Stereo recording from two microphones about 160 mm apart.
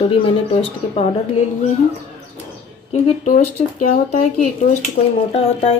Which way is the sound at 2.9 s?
50° left (ahead or behind).